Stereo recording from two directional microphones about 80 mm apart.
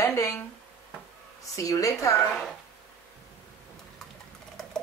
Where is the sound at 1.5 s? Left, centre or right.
Left.